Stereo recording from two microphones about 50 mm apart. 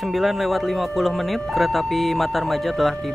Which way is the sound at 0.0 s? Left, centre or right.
Centre.